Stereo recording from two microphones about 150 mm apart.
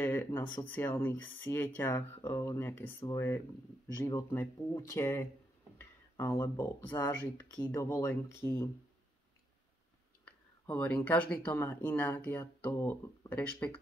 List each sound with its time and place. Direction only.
0.0 s speech: 15° left (ahead or behind)
10.2 s a sound: 10° left (ahead or behind)
11.1 s speech: 10° left (ahead or behind)